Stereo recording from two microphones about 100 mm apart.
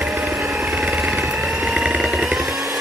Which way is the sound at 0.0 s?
5° right (ahead or behind).